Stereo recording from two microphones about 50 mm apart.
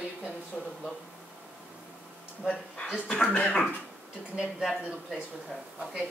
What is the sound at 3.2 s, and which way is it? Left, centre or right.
Speech, left.